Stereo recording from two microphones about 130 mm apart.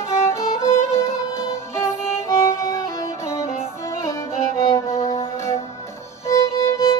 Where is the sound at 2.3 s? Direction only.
20° left (ahead or behind).